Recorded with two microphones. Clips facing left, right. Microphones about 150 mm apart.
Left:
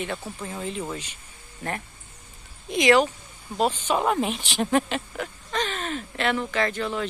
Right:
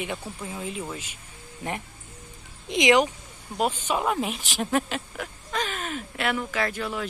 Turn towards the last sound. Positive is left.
turn(degrees=-5)  # may be behind; listen again after turning